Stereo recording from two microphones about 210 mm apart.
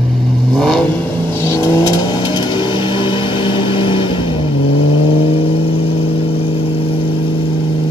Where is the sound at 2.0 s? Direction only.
20° left (ahead or behind).